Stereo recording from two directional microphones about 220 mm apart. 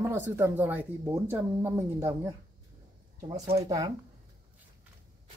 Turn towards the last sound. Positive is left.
turn(degrees=-20)  # may be behind; listen again after turning